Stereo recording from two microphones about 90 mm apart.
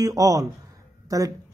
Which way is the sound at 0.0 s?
40° right (ahead or behind).